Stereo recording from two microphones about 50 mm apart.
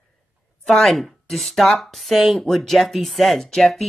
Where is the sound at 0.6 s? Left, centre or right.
Centre.